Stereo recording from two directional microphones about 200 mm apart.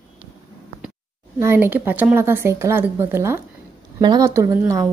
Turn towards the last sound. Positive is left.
turn(degrees=-15)  # may be behind; listen again after turning